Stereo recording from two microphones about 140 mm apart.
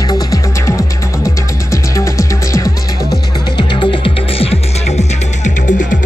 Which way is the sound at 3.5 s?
35° left (ahead or behind).